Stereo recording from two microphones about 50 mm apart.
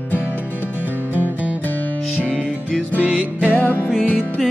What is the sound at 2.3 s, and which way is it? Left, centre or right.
Music, centre.